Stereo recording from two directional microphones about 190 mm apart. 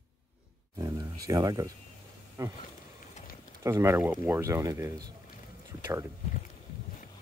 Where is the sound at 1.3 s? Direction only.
20° right (ahead or behind).